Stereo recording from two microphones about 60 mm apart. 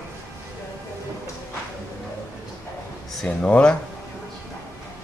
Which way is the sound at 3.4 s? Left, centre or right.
Centre.